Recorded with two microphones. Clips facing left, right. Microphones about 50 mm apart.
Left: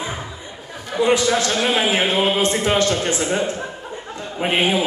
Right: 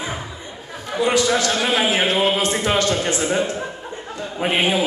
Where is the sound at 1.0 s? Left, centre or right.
Left.